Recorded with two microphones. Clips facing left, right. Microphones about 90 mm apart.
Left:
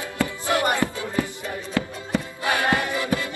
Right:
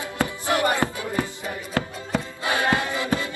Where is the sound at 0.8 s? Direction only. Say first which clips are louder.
Even; 55° right (ahead or behind).